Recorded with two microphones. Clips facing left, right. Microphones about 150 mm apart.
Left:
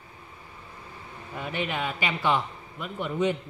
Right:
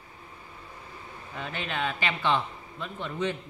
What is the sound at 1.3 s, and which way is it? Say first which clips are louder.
A man's voice: left 2 dB; 10° left (ahead or behind).